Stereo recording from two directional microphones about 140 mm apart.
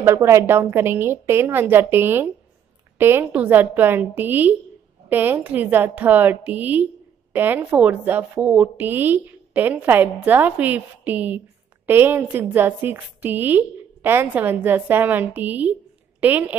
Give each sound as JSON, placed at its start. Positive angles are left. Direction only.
{"t": 0.0, "sound": "speech", "side_deg": -20}